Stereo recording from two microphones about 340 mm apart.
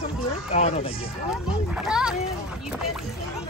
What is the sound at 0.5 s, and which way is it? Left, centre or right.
Speech, centre.